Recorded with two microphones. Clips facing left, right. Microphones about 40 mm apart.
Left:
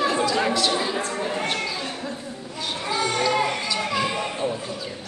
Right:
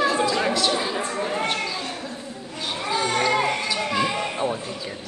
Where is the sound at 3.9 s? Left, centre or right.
Centre.